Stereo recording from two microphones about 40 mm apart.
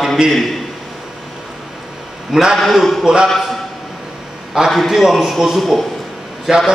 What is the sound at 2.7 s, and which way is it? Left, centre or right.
Speech, centre.